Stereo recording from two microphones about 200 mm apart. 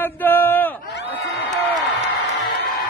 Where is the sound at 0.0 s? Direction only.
10° left (ahead or behind).